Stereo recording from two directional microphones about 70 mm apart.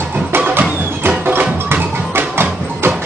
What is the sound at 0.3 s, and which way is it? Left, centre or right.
Music, right.